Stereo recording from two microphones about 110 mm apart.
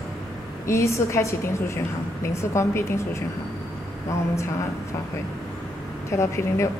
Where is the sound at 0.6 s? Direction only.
25° left (ahead or behind).